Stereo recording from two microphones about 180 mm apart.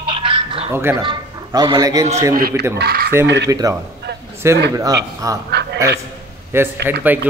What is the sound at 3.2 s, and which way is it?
Speech, 75° right (ahead or behind).